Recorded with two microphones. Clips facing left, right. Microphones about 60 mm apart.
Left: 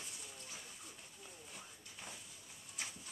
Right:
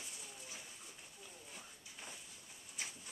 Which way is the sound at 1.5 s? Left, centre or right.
Centre.